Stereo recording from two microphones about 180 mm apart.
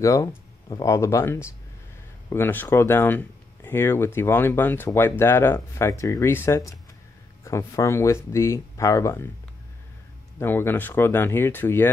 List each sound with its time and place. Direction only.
0.0 s speech: 20° left (ahead or behind)
10.4 s speech: 10° left (ahead or behind)